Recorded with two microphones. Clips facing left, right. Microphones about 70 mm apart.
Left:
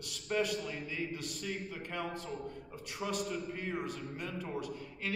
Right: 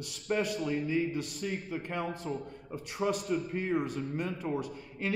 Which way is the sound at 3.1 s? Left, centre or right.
Right.